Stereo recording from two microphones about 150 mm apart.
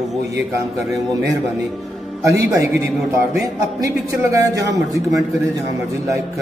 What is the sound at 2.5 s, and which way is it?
A man's voice, 20° right (ahead or behind).